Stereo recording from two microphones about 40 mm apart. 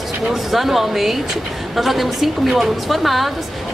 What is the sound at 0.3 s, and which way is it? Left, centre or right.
A woman's voice, centre.